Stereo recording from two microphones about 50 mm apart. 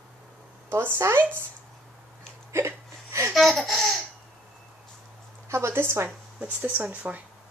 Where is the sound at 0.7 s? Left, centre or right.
Right.